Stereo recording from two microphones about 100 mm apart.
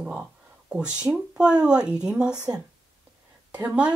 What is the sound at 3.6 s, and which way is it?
Speech, 10° right (ahead or behind).